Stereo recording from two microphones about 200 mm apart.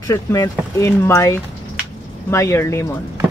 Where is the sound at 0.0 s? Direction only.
15° left (ahead or behind).